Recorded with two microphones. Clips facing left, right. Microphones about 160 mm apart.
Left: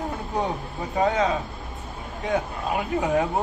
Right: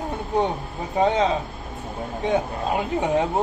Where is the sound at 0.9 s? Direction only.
25° right (ahead or behind).